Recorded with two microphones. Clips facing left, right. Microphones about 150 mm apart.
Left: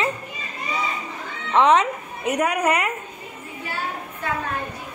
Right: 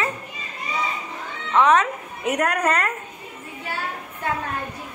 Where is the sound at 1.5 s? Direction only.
25° left (ahead or behind).